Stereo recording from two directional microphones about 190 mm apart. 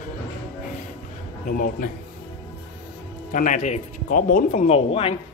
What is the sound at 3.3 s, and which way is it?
A man's voice, 40° left (ahead or behind).